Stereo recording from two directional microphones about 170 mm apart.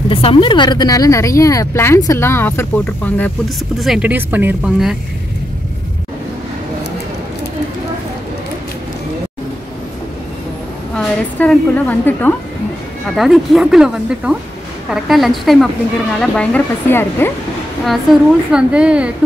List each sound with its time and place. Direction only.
0.1 s speech: 30° left (ahead or behind); by 2.7 s 15° left (ahead or behind)
3.8 s speech: 5° right (ahead or behind)
11.0 s a woman's voice: 10° left (ahead or behind)
13.1 s speech: centre (ahead or behind)
18.5 s speech: 5° right (ahead or behind)